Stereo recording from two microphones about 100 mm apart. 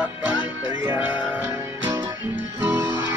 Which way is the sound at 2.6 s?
30° right (ahead or behind).